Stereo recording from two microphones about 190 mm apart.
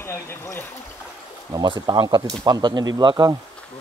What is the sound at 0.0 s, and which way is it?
Speech, 10° left (ahead or behind).